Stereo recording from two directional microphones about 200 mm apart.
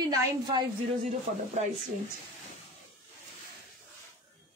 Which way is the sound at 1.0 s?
35° right (ahead or behind).